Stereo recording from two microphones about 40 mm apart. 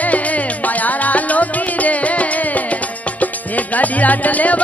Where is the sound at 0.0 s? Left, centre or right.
Left.